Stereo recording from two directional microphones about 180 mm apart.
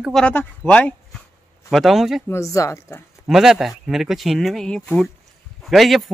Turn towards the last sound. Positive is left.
turn(degrees=0)  # may be behind; listen again after turning